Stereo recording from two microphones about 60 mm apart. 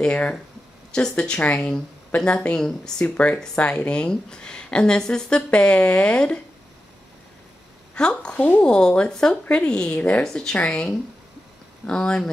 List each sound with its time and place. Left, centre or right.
0.0 s speech: centre
7.9 s speech: centre
10.2 s speech: centre